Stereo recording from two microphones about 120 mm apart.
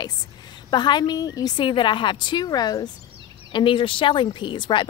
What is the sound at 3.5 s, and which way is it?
Speech, 45° left (ahead or behind).